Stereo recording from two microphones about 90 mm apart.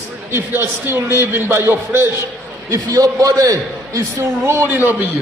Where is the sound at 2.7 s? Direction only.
40° right (ahead or behind).